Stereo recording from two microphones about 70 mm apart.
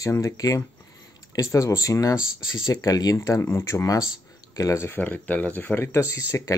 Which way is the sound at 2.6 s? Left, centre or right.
Left.